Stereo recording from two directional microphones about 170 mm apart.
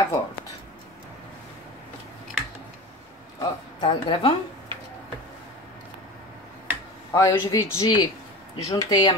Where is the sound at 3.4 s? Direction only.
30° left (ahead or behind).